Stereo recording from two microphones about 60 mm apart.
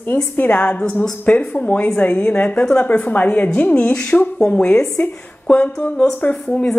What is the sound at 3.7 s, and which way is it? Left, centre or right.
A woman's voice, centre.